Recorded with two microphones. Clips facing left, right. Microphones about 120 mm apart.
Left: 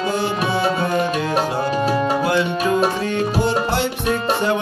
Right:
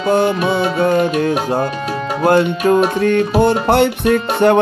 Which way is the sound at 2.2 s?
50° right (ahead or behind).